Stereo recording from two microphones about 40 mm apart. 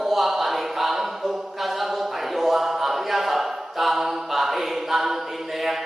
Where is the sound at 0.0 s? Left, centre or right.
Centre.